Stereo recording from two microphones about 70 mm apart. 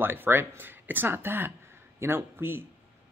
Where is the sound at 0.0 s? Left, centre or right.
Right.